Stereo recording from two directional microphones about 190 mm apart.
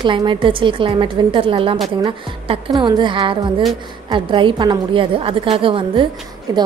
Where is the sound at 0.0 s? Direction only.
25° right (ahead or behind).